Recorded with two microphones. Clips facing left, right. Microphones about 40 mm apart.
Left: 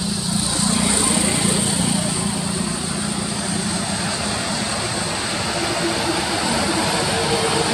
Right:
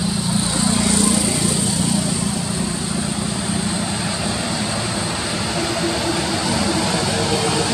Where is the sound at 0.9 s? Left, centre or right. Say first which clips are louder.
Right 2 dB; left.